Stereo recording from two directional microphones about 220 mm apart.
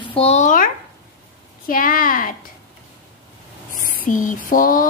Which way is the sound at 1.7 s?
40° left (ahead or behind).